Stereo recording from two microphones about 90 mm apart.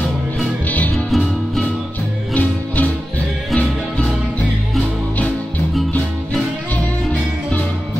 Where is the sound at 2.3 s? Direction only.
20° left (ahead or behind).